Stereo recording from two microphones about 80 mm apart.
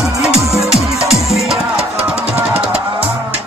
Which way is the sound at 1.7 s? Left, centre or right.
Centre.